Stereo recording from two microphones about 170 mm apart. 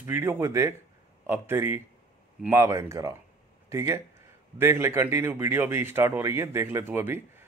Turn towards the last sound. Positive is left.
turn(degrees=-15)  # may be behind; listen again after turning